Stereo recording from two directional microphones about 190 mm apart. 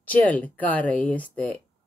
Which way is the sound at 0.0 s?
10° left (ahead or behind).